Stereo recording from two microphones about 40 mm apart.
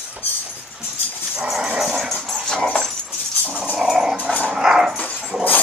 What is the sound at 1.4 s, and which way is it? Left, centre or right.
Dog, centre.